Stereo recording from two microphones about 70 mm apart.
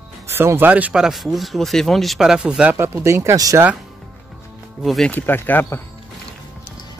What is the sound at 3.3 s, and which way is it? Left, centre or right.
Speech, right.